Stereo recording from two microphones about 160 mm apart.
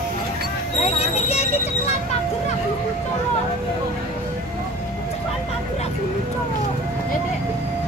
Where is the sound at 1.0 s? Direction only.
40° left (ahead or behind).